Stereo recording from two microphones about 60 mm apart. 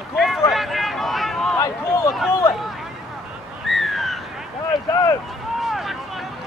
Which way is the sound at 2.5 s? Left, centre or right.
Centre.